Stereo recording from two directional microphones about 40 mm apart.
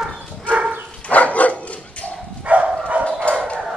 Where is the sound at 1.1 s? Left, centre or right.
Left.